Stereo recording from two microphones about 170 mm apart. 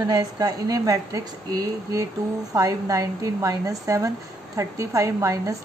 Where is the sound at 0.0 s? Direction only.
20° right (ahead or behind).